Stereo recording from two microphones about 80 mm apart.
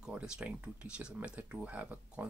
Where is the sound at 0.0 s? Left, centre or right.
Centre.